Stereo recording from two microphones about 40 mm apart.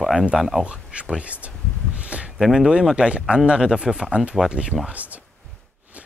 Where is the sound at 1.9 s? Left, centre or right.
Right.